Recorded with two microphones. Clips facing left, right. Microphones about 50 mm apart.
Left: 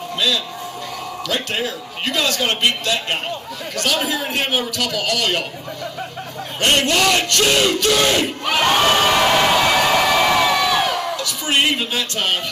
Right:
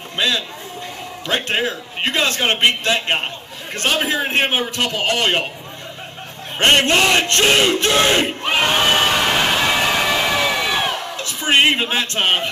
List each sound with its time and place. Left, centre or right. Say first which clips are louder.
1.2 s battle cry: right 3 dB; right
6.6 s battle cry: right 2 dB; right
8.6 s crowd: left 2 dB; centre
9.3 s a sound: left 2 dB; centre; by 12.4 s right